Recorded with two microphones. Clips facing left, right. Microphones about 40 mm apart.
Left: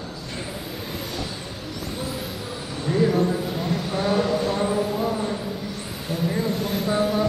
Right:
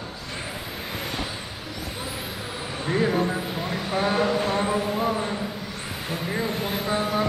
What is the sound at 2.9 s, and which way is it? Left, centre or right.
Vehicle, right.